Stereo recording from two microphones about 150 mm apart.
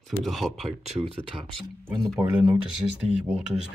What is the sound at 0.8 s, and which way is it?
Speech, 45° right (ahead or behind).